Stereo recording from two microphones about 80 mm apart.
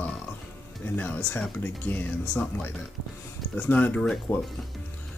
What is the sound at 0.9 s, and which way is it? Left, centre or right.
Speech, left.